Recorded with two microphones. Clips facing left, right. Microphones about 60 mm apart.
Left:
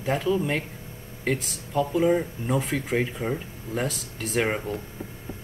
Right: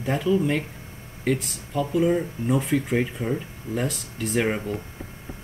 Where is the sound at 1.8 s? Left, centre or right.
Left.